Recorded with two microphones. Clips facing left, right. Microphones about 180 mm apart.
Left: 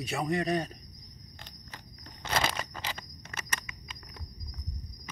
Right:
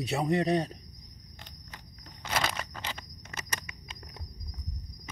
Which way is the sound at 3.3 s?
20° right (ahead or behind).